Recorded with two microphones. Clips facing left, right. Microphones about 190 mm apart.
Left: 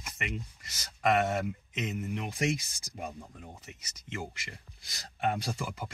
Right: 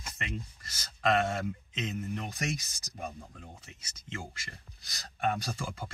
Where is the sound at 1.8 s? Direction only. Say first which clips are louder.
Left 2 dB; 10° left (ahead or behind).